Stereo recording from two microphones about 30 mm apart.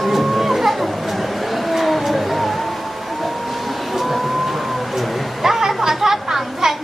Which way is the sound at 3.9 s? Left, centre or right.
Centre.